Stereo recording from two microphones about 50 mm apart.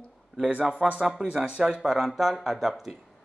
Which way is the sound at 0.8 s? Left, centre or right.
Centre.